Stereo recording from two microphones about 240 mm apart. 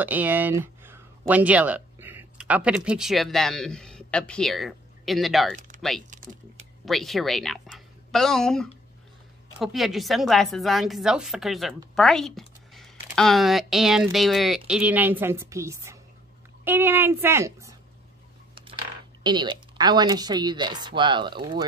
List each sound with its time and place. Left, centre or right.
0.0 s speech: centre
6.0 s speech: right
6.9 s a woman's voice: centre
19.2 s speech: centre